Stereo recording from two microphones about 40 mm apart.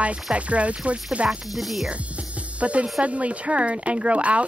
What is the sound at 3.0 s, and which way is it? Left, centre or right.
Speech, right.